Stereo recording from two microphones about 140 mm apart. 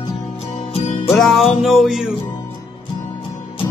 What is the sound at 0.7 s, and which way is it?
Music, 55° left (ahead or behind).